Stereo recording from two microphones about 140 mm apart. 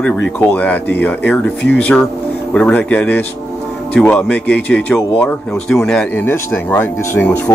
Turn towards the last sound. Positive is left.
turn(degrees=10)  # may be behind; listen again after turning